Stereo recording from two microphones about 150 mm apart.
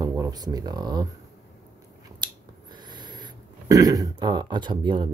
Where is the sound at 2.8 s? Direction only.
30° right (ahead or behind).